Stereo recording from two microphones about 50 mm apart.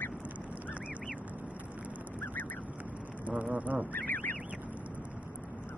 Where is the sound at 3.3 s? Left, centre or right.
Right.